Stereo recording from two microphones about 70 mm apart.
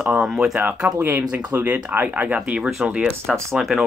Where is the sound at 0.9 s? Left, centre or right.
Right.